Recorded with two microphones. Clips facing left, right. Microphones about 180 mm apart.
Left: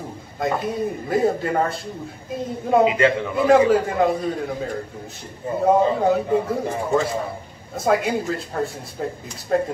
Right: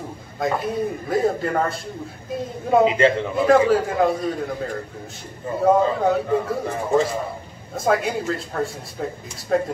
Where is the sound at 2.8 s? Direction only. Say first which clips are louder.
Right 1 dB; 25° right (ahead or behind).